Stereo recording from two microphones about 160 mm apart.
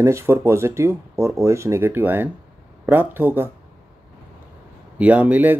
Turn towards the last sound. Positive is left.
turn(degrees=-10)  # may be behind; listen again after turning